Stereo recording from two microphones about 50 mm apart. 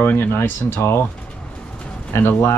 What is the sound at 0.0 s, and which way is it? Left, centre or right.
Speech, left.